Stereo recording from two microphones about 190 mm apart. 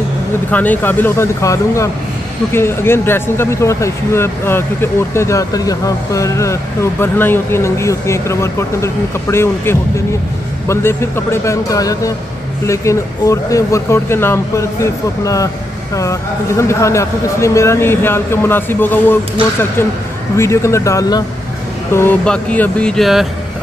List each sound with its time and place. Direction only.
0.5 s speech: 10° left (ahead or behind)
20.3 s speech: 15° left (ahead or behind)